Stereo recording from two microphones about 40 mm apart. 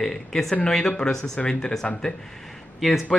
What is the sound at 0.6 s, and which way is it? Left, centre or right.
Speech, left.